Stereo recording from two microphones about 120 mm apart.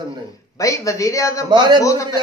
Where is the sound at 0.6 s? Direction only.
25° left (ahead or behind).